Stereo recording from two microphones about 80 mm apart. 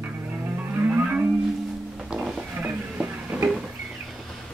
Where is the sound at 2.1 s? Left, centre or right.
Centre.